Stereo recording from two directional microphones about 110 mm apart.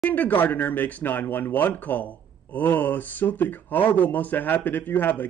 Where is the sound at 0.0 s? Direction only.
15° left (ahead or behind).